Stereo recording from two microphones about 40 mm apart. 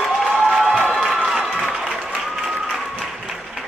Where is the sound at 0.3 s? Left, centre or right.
Centre.